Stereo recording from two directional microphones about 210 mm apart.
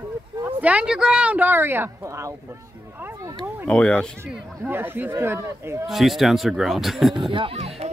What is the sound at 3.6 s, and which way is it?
A man's voice, 5° left (ahead or behind).